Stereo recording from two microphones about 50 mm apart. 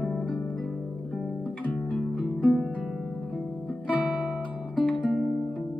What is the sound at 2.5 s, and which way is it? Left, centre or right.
Music, right.